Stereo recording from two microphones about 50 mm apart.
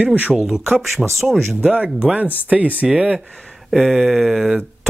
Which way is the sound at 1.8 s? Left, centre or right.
Right.